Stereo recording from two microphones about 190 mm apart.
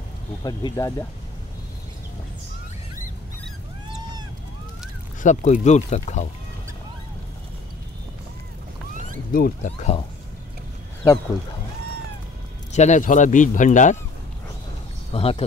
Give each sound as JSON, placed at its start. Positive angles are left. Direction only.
{"t": 0.4, "sound": "speech", "side_deg": 20}
{"t": 5.2, "sound": "speech", "side_deg": 40}
{"t": 9.3, "sound": "speech", "side_deg": 50}
{"t": 9.7, "sound": "speech", "side_deg": 35}
{"t": 12.7, "sound": "speech", "side_deg": 40}
{"t": 15.1, "sound": "speech", "side_deg": 30}